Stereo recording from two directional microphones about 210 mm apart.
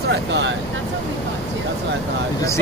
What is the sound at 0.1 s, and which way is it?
Speech, 55° right (ahead or behind).